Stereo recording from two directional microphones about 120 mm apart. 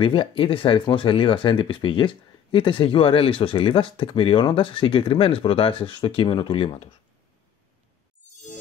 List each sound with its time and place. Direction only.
0.0 s speech: 45° left (ahead or behind)